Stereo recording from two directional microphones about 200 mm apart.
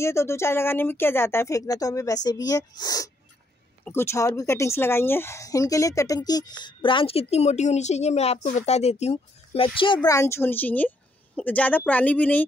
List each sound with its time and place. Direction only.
0.0 s speech: 15° left (ahead or behind)
10.0 s speech: 15° left (ahead or behind)